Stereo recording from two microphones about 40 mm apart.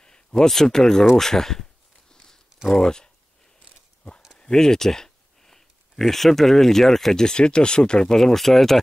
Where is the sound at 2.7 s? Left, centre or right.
Centre.